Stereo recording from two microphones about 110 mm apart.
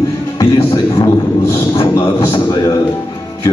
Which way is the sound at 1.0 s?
30° left (ahead or behind).